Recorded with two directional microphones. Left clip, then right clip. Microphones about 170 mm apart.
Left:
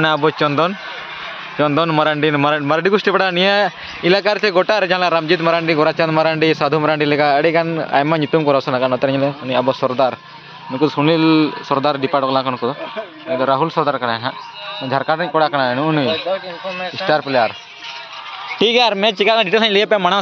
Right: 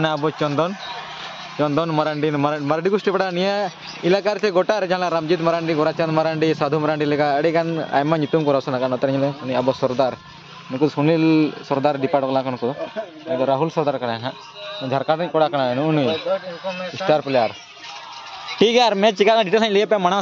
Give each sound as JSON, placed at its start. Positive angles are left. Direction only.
{"t": 0.0, "sound": "a man's voice", "side_deg": 5}
{"t": 16.1, "sound": "speech", "side_deg": -55}
{"t": 18.6, "sound": "speech", "side_deg": -20}